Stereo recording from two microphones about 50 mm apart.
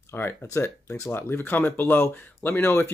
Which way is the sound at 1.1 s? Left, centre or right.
Left.